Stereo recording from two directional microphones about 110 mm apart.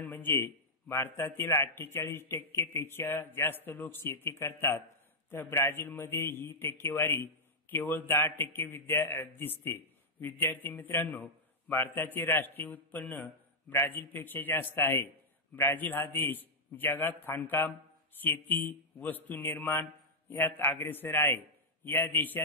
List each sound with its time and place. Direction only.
0.0 s a man's voice: 15° left (ahead or behind)